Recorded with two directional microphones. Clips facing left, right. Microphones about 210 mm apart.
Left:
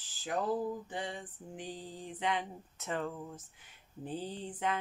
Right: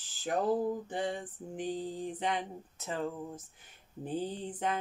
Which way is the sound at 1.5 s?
50° right (ahead or behind).